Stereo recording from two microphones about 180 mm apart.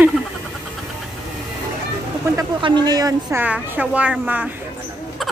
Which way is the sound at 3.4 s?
10° right (ahead or behind).